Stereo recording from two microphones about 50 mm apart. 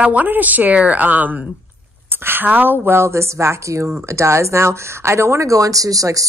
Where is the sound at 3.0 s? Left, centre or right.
Right.